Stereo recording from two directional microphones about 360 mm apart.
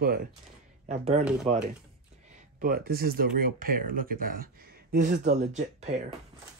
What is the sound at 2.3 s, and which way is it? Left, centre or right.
Speech, right.